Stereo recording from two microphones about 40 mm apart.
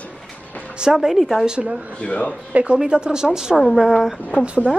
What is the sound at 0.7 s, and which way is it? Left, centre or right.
Speech, centre.